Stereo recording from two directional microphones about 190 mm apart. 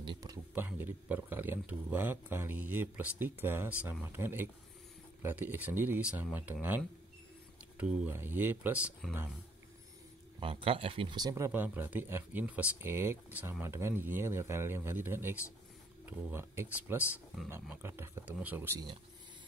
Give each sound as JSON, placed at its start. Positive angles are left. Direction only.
{"t": 0.0, "sound": "a sound", "side_deg": -20}
{"t": 0.7, "sound": "speech", "side_deg": -10}
{"t": 10.4, "sound": "speech", "side_deg": -30}